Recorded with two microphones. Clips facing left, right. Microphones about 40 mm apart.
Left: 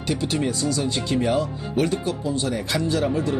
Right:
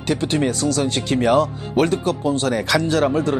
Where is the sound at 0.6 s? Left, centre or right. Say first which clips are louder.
Right 4 dB; right.